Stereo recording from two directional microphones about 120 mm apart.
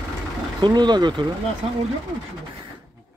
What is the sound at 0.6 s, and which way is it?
Speech, 35° right (ahead or behind).